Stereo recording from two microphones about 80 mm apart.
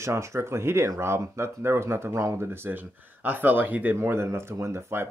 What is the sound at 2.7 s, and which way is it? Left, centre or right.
Speech, right.